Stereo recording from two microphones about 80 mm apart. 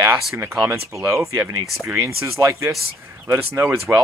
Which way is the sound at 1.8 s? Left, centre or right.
Right.